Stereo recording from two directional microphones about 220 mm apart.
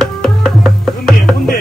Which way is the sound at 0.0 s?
Centre (ahead or behind).